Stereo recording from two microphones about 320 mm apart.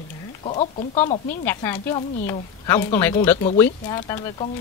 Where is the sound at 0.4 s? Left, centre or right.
Centre.